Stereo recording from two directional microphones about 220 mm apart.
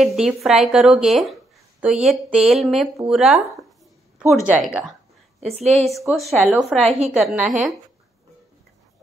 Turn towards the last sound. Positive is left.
turn(degrees=-5)  # may be behind; listen again after turning